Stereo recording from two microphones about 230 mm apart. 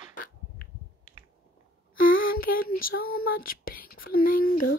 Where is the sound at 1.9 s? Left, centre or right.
Left.